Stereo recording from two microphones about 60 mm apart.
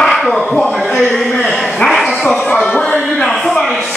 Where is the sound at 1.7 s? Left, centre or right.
Centre.